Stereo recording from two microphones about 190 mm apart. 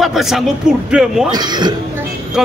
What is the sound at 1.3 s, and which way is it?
Speech, 20° right (ahead or behind).